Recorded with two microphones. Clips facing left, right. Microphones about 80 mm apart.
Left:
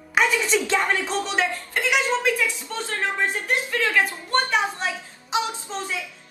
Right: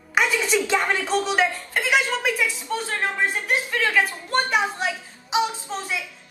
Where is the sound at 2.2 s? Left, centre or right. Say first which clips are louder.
Left 1 dB; centre.